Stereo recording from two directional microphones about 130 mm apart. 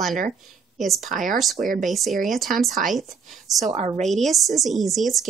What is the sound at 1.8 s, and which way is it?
Speech, centre (ahead or behind).